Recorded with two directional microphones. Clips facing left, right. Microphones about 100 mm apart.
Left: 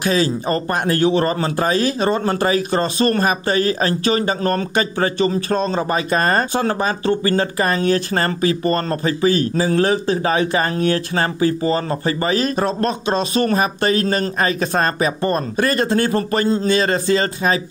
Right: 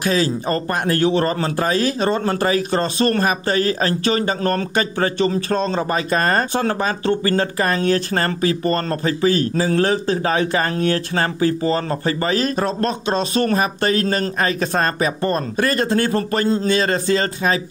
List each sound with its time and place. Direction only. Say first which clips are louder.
0.0 s speech: left 1 dB; 20° left (ahead or behind)